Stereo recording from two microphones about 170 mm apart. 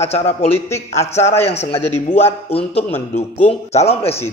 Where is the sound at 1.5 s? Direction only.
40° left (ahead or behind).